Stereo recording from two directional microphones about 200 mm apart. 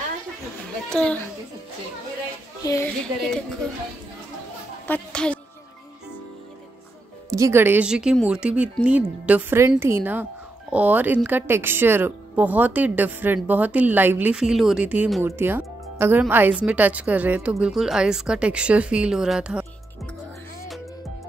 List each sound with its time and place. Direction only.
0.8 s speech: 5° left (ahead or behind)
2.6 s a woman's voice: 15° left (ahead or behind)
3.2 s speech: 5° left (ahead or behind)
4.8 s music: 5° left (ahead or behind)
7.2 s speech: 15° right (ahead or behind)